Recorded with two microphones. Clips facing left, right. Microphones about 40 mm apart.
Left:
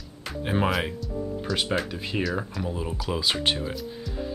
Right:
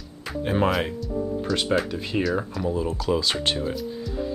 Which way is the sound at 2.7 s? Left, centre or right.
Centre.